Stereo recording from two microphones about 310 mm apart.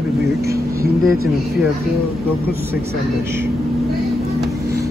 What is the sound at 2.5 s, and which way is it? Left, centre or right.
Speech, right.